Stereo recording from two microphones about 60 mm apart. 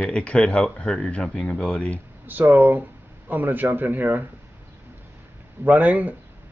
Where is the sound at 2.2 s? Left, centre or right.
Right.